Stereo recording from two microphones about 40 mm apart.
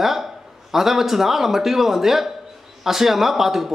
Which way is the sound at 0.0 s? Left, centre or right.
Centre.